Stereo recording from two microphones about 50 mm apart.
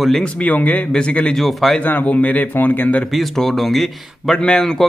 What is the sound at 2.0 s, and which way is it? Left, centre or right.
Speech, left.